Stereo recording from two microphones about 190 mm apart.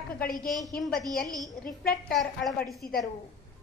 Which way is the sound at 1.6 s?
50° left (ahead or behind).